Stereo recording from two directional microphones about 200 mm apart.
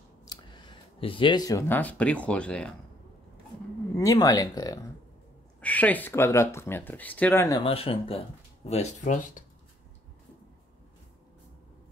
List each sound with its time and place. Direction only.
0.2 s speech: 20° left (ahead or behind); by 2.7 s 5° left (ahead or behind)
3.9 s speech: 15° left (ahead or behind)
5.6 s speech: 5° left (ahead or behind)
7.6 s speech: 30° left (ahead or behind)